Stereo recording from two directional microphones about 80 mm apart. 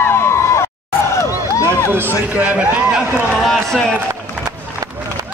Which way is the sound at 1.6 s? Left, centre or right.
Right.